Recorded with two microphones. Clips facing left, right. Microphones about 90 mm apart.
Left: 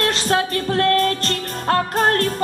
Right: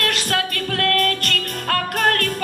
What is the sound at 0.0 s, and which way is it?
Music, 25° left (ahead or behind).